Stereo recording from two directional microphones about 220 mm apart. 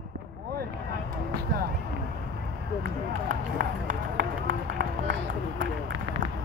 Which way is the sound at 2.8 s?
40° right (ahead or behind).